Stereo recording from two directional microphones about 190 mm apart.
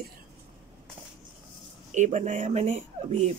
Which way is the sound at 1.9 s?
40° right (ahead or behind).